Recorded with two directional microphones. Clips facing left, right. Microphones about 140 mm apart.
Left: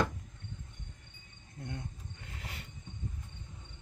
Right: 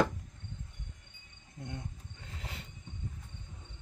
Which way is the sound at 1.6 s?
15° right (ahead or behind).